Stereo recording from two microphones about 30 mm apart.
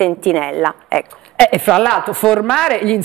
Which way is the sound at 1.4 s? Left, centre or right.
Left.